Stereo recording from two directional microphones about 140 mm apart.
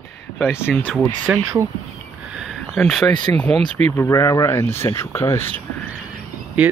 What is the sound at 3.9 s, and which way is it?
Speech, 20° left (ahead or behind).